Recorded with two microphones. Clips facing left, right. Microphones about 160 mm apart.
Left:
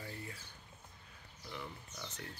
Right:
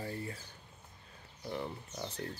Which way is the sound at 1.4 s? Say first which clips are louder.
Right 8 dB; 40° right (ahead or behind).